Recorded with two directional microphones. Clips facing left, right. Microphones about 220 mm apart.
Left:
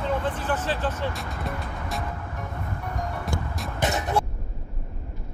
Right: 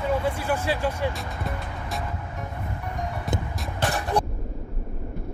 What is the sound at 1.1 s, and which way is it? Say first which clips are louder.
Music: even; centre (ahead or behind).